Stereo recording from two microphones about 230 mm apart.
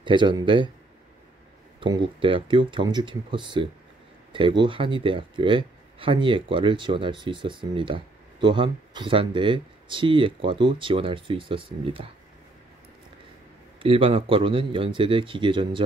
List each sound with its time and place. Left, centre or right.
0.0 s speech: centre
1.8 s speech: right
13.7 s speech: right